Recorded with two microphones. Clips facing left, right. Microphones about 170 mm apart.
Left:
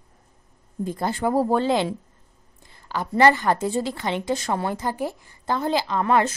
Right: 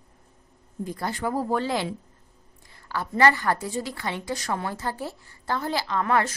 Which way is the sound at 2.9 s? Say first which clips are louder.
Left 3 dB; 20° left (ahead or behind).